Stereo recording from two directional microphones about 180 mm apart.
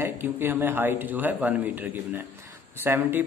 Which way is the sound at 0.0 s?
10° right (ahead or behind).